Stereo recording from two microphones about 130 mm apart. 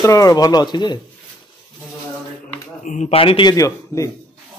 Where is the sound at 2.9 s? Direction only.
65° left (ahead or behind).